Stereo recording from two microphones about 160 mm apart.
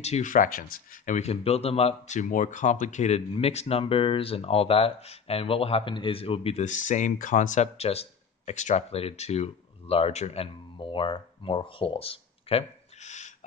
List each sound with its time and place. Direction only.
0.0 s speech: 45° left (ahead or behind)